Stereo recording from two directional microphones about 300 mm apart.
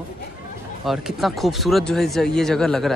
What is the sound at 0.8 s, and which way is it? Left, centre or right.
Speech, centre.